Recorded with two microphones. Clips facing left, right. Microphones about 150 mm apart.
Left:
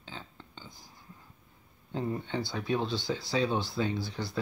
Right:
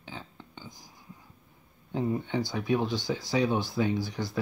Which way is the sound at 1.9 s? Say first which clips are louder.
Right 4 dB; 15° right (ahead or behind).